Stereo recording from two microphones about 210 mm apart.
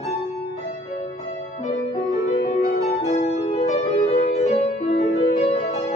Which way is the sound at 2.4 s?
45° left (ahead or behind).